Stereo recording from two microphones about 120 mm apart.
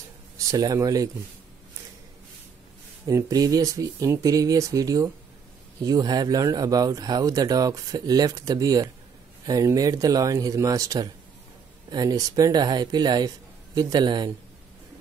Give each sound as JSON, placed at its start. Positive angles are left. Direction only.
{"t": 0.5, "sound": "speech", "side_deg": -30}
{"t": 3.1, "sound": "speech", "side_deg": -30}